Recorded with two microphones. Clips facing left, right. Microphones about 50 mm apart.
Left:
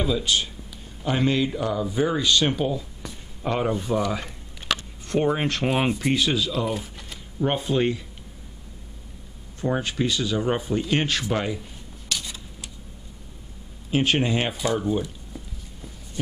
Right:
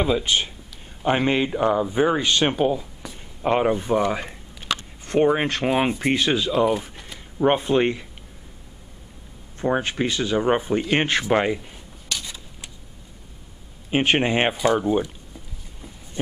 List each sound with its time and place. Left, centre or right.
0.0 s speech: right; by 5.9 s centre
5.9 s speech: right
7.3 s speech: right
9.6 s speech: right
12.1 s a sound: centre
13.8 s speech: right